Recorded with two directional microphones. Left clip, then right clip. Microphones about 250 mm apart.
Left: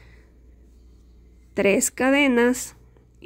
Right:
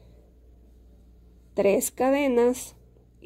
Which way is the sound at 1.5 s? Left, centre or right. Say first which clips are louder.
Left 2 dB; centre.